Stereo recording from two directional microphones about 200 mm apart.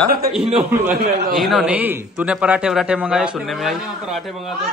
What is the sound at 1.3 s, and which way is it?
A man's voice, centre (ahead or behind).